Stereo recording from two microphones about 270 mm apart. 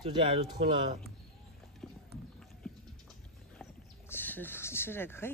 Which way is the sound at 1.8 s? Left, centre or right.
Centre.